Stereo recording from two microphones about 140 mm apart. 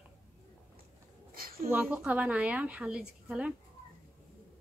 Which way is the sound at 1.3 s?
90° right.